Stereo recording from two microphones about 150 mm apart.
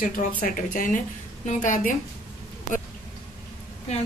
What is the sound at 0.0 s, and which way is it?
A woman's voice, 65° left (ahead or behind).